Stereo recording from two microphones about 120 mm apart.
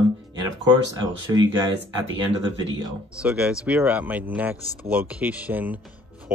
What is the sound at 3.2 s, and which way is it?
Speech, 5° right (ahead or behind).